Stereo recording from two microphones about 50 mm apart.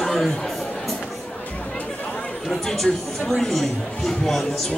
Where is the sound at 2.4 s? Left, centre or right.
Centre.